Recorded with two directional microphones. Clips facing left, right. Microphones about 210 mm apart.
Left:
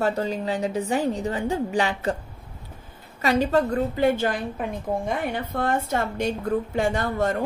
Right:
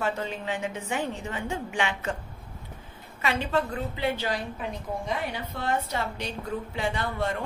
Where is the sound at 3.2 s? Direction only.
40° left (ahead or behind).